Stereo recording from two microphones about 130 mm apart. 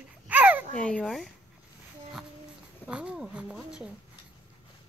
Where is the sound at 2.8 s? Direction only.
5° right (ahead or behind).